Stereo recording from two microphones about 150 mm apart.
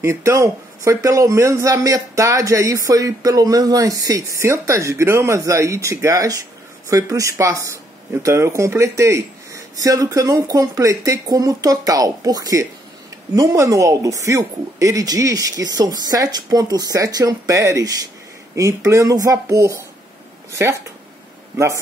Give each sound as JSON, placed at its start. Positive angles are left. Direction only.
{"t": 0.0, "sound": "speech", "side_deg": -20}